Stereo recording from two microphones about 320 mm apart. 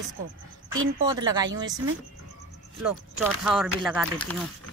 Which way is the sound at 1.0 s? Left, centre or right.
Centre.